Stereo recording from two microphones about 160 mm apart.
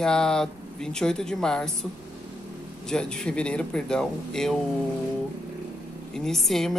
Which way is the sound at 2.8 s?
5° left (ahead or behind).